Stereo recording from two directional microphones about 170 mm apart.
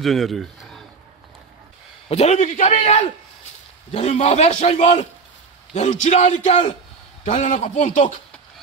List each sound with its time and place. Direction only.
0.0 s speech: centre (ahead or behind)
2.0 s a man's voice: 40° left (ahead or behind)